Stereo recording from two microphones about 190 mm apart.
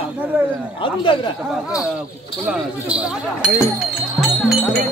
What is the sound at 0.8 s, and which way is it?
Speech, 25° left (ahead or behind).